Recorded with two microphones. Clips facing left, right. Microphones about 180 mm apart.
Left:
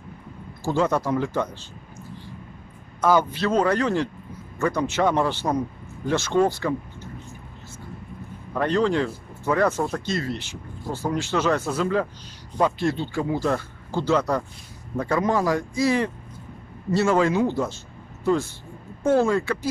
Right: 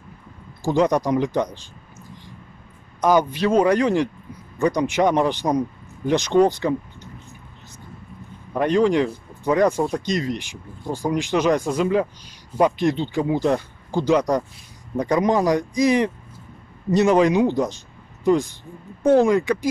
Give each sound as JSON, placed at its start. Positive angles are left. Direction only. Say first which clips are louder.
{"t": 0.7, "sound": "speech", "louder": "right 4 dB", "side_deg": -15}
{"t": 3.0, "sound": "speech", "louder": "right 2 dB", "side_deg": -15}
{"t": 8.5, "sound": "speech", "louder": "right 4 dB", "side_deg": -15}